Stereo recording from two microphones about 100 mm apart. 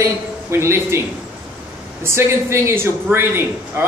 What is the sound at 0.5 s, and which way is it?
Speech, 25° right (ahead or behind).